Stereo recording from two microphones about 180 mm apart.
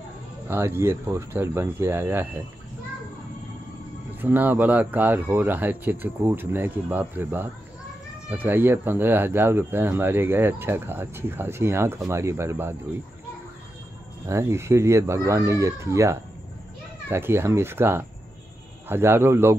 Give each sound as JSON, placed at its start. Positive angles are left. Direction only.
{"t": 0.5, "sound": "speech", "side_deg": -15}
{"t": 4.2, "sound": "speech", "side_deg": -10}
{"t": 14.2, "sound": "speech", "side_deg": -15}